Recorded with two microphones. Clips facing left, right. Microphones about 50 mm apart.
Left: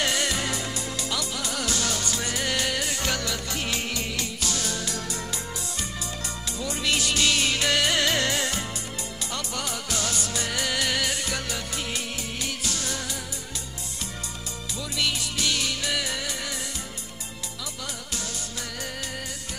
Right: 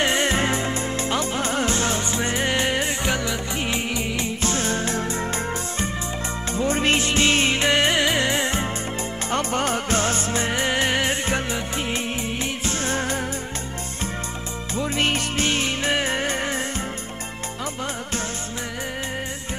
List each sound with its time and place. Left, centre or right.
0.0 s music: right
4.4 s music: right
9.3 s music: right
14.8 s music: right